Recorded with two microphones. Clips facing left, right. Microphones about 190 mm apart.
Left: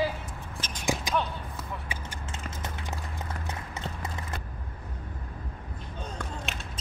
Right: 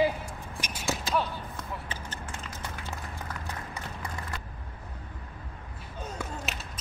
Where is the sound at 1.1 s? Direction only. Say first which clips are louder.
Right 2 dB; 15° left (ahead or behind).